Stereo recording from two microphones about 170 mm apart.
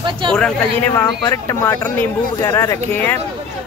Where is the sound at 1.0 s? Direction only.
20° left (ahead or behind).